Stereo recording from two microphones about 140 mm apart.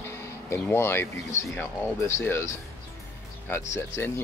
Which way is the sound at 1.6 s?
15° left (ahead or behind).